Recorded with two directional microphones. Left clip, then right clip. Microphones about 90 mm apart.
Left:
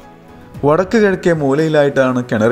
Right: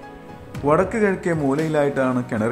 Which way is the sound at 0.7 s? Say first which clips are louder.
Left 6 dB; 70° left (ahead or behind).